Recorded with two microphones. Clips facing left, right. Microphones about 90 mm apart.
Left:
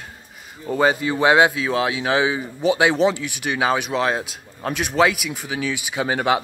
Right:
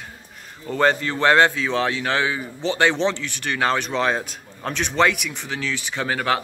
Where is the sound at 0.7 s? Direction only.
10° left (ahead or behind).